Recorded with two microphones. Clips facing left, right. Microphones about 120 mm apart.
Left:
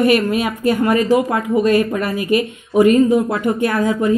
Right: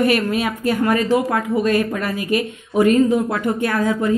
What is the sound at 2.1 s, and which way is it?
Speech, 35° right (ahead or behind).